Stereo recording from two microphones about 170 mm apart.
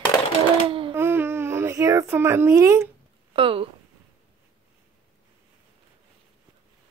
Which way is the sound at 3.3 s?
30° right (ahead or behind).